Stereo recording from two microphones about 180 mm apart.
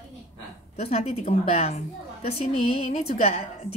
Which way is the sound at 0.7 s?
35° left (ahead or behind).